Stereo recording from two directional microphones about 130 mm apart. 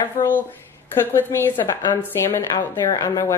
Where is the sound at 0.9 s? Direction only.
20° left (ahead or behind).